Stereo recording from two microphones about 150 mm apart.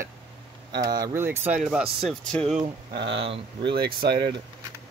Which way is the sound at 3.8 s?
90° right.